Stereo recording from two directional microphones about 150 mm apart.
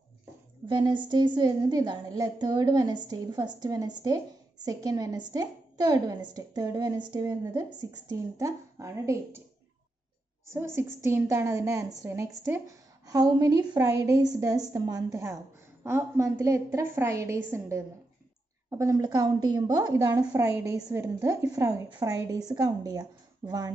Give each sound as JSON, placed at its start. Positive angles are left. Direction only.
{"t": 0.7, "sound": "a woman's voice", "side_deg": -30}
{"t": 10.5, "sound": "a woman's voice", "side_deg": -15}